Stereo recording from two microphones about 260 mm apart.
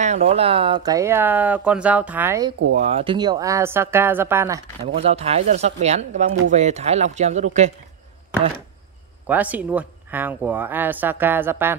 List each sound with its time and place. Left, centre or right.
0.0 s speech: right; by 2.5 s centre
2.7 s speech: right; by 4.6 s centre
4.8 s speech: right
9.3 s speech: centre